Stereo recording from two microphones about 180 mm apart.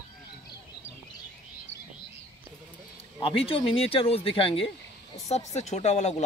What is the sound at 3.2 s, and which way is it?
Speech, 30° left (ahead or behind).